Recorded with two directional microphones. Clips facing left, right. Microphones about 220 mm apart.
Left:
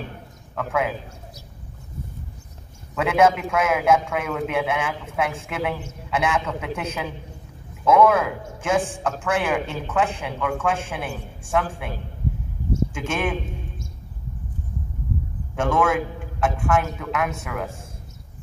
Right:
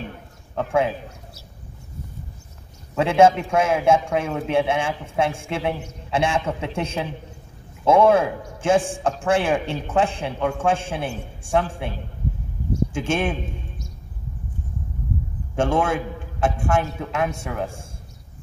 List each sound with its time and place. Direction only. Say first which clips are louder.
0.6 s a man's voice: right 3 dB; 30° right (ahead or behind)
3.0 s a man's voice: right 3 dB; 30° right (ahead or behind)
12.9 s a man's voice: right 2 dB; 30° right (ahead or behind)
15.5 s a man's voice: even; 30° right (ahead or behind)